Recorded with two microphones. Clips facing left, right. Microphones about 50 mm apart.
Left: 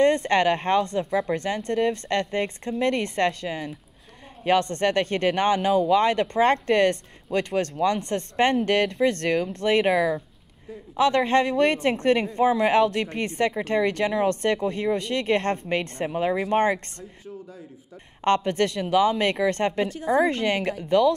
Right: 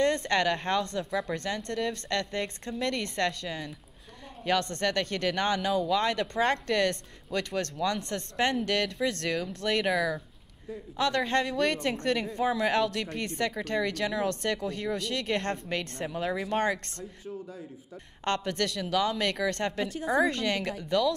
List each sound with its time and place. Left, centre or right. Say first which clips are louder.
0.0 s speech: left 6 dB; left
18.2 s speech: left 8 dB; left